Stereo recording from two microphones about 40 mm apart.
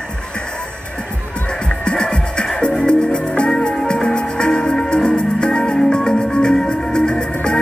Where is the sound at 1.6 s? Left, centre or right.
Left.